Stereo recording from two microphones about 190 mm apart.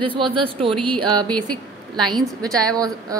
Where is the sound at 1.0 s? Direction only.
20° right (ahead or behind).